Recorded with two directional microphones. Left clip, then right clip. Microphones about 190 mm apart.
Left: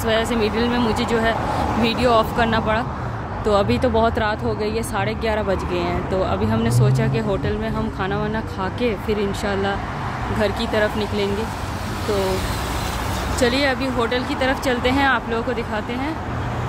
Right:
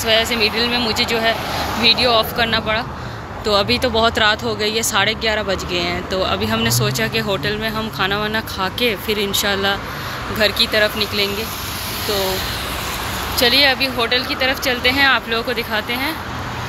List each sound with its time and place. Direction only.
0.0 s speech: 15° left (ahead or behind)
13.4 s speech: 10° left (ahead or behind)